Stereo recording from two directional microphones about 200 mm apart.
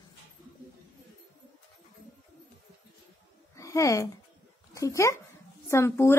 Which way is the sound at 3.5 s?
15° left (ahead or behind).